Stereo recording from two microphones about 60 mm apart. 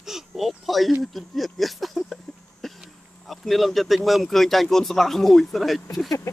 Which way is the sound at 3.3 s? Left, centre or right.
Centre.